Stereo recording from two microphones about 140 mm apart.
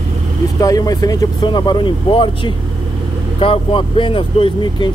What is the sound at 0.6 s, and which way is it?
Speech, 25° left (ahead or behind).